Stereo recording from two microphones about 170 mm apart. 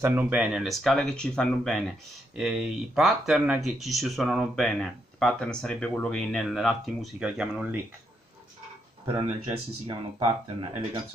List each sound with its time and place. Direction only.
0.0 s speech: 10° right (ahead or behind)
9.0 s speech: 30° right (ahead or behind)